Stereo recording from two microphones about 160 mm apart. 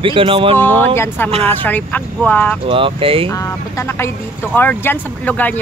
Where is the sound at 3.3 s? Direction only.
20° left (ahead or behind).